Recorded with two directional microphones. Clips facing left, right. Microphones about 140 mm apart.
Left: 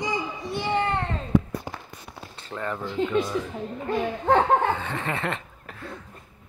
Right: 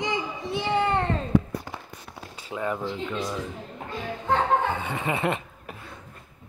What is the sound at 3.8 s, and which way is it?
Speech, 60° left (ahead or behind).